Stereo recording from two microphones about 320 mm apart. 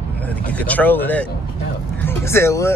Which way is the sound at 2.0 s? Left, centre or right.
Centre.